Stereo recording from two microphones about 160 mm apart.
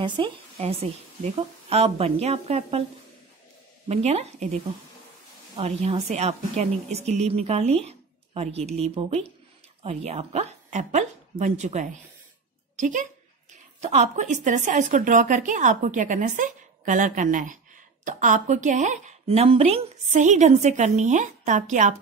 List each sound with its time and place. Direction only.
0.0 s speech: 30° right (ahead or behind)
1.7 s a woman's voice: 40° right (ahead or behind)
3.9 s speech: 40° right (ahead or behind)
5.6 s a woman's voice: 40° right (ahead or behind)